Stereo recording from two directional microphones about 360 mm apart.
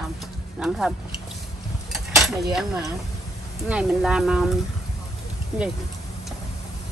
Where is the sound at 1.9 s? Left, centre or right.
Centre.